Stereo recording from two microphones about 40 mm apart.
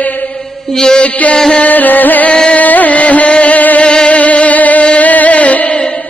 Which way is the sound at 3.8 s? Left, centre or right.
Left.